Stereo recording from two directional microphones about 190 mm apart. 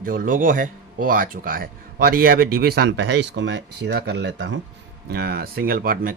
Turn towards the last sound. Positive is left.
turn(degrees=-50)  # may be behind; listen again after turning